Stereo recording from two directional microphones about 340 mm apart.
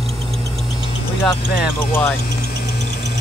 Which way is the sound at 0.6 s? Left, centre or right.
Centre.